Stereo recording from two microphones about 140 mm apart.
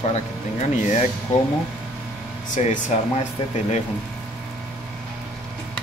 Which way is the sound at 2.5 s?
65° left (ahead or behind).